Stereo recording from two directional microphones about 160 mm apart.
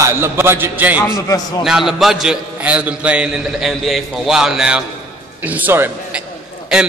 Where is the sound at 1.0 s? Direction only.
20° left (ahead or behind).